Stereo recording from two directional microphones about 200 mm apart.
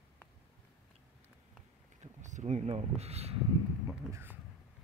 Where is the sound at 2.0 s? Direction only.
35° right (ahead or behind).